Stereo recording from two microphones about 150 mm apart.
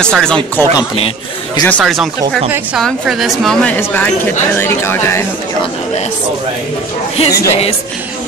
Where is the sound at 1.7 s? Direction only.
Centre (ahead or behind).